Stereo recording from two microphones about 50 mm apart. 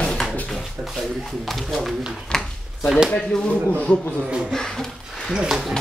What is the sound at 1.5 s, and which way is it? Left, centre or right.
Speech, centre.